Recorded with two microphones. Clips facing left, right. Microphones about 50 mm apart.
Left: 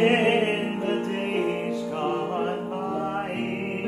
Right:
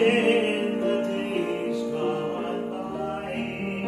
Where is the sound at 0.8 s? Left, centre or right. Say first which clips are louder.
Right 1 dB; left.